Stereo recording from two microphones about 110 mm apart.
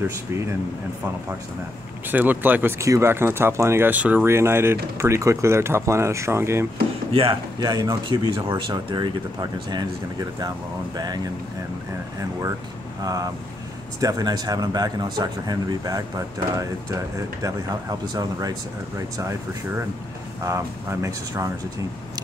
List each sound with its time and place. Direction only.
2.0 s speech: 15° right (ahead or behind)
7.6 s speech: 35° right (ahead or behind)
12.2 s speech: 30° right (ahead or behind)